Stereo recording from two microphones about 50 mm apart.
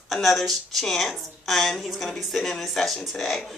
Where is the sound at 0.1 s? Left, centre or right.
Centre.